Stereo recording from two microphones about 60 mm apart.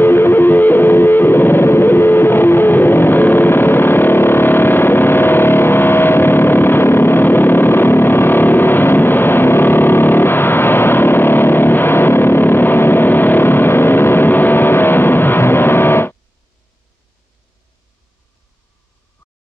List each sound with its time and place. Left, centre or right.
0.0 s music: left